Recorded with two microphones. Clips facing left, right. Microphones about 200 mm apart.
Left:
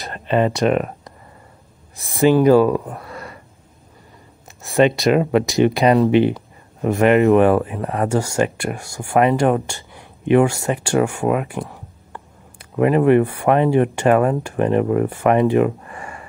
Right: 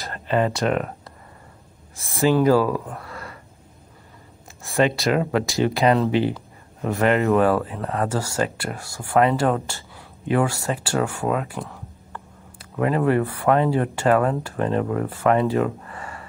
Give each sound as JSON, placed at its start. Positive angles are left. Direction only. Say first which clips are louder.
{"t": 0.0, "sound": "speech", "louder": "left 3 dB", "side_deg": 20}
{"t": 4.6, "sound": "speech", "louder": "left 5 dB", "side_deg": 15}